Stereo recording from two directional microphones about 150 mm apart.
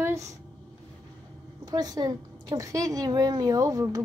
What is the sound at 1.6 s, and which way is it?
Speech, 25° right (ahead or behind).